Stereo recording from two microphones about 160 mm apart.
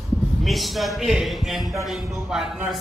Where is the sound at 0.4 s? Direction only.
Centre (ahead or behind).